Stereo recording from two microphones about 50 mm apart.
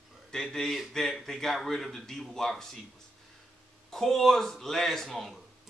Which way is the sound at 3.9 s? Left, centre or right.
Centre.